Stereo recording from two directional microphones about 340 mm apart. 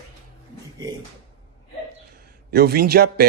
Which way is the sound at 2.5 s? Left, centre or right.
Right.